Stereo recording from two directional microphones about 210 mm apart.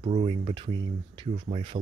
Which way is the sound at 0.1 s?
30° right (ahead or behind).